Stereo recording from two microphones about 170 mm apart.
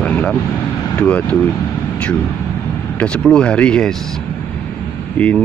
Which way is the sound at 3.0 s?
5° left (ahead or behind).